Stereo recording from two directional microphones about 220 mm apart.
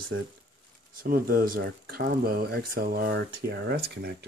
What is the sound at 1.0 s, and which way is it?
Speech, 40° right (ahead or behind).